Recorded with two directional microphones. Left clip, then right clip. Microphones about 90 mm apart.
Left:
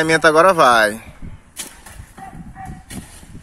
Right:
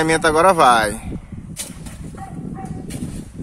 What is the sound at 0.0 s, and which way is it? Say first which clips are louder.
Speech: left 2 dB; 5° left (ahead or behind).